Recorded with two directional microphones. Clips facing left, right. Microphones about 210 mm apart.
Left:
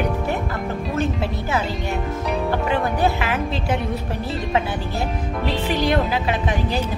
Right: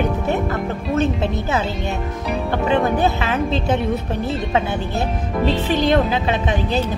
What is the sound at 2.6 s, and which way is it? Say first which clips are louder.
Speech: right 6 dB; 20° right (ahead or behind).